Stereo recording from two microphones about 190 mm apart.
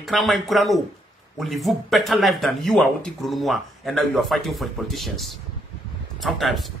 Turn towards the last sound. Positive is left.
turn(degrees=0)  # may be behind; listen again after turning